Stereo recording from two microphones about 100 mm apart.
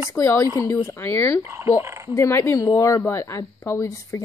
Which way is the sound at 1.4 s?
25° right (ahead or behind).